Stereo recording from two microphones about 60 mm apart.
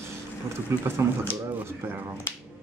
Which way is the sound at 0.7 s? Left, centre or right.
Right.